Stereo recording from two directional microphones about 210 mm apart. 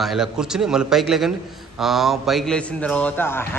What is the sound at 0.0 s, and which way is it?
A man's voice, centre (ahead or behind).